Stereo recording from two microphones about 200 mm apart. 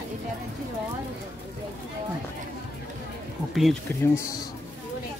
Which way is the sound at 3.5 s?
Centre (ahead or behind).